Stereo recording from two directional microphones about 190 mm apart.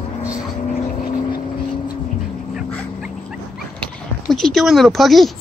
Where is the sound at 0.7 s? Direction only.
50° left (ahead or behind).